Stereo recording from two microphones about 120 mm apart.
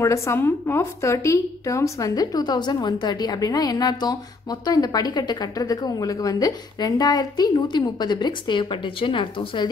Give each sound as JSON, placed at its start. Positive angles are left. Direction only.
{"t": 0.0, "sound": "a woman's voice", "side_deg": 25}